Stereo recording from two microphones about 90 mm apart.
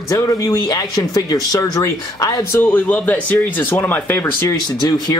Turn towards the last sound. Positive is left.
turn(degrees=25)  # may be behind; listen again after turning